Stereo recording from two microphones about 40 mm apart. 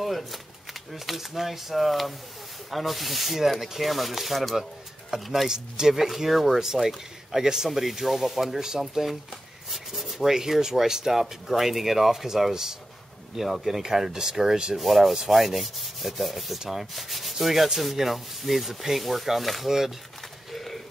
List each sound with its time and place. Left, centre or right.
0.0 s shuffling cards: centre
0.9 s speech: centre
5.3 s rub: centre
5.9 s speech: centre
6.6 s rub: centre
7.7 s speech: centre
9.7 s rub: centre
14.8 s speech: centre
20.5 s bird: centre